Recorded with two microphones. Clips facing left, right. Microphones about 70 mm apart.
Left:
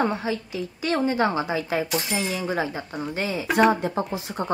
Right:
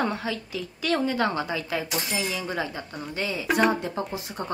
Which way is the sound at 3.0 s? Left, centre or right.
Left.